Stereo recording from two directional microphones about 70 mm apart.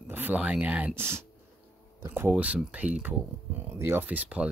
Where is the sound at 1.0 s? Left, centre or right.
Right.